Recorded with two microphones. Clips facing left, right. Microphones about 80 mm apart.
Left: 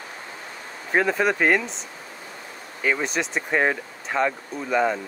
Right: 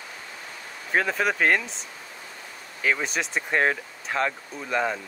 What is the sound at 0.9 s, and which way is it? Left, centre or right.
Speech, centre.